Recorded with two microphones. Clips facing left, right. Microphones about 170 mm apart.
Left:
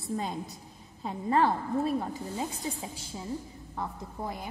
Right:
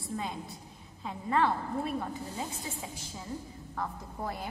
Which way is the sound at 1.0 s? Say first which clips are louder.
Left 3 dB; 40° left (ahead or behind).